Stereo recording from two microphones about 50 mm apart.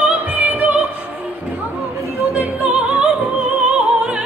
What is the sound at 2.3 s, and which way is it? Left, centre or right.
Music, right.